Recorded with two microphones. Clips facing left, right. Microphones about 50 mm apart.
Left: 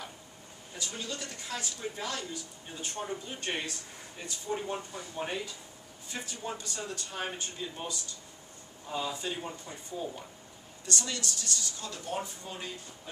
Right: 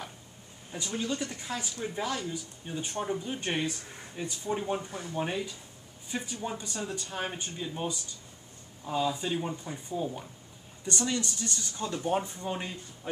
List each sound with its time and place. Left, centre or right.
0.7 s speech: right
6.0 s speech: centre; by 13.1 s right